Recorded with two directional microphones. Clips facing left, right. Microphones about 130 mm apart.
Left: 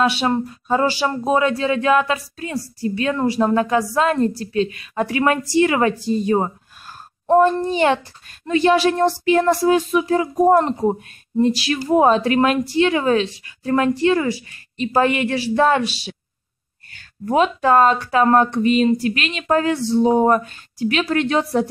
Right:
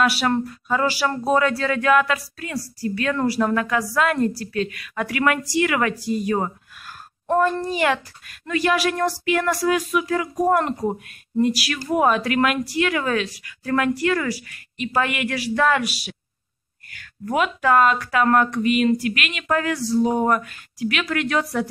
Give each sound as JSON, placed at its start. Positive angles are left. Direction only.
{"t": 0.0, "sound": "a child's voice", "side_deg": 20}